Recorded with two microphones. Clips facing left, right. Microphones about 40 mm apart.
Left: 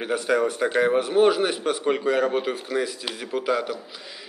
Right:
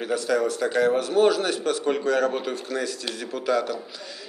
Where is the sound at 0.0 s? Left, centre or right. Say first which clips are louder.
Left 1 dB; left.